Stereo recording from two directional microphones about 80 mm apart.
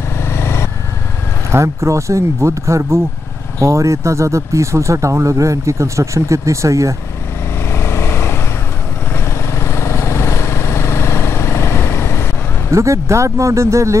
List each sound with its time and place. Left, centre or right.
0.2 s vehicle: left
1.5 s speech: right
7.7 s vehicle: left
12.7 s speech: right